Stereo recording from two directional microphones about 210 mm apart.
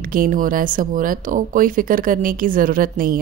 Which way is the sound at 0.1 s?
40° right (ahead or behind).